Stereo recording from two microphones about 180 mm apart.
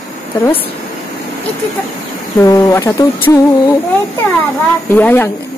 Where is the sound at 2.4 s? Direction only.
20° left (ahead or behind).